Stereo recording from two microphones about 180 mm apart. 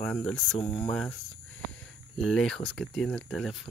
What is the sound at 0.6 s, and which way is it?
Speech, 30° left (ahead or behind).